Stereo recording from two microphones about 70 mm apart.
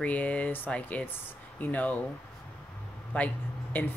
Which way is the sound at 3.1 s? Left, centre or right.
Left.